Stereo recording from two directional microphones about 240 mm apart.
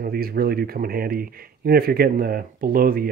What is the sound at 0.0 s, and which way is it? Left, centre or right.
Speech, right.